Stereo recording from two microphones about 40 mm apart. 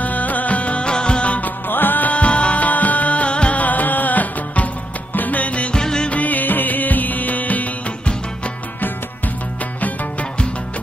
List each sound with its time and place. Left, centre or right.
0.0 s music: left
1.4 s music: left
2.0 s music: left
3.6 s music: left
5.8 s music: centre
6.0 s music: left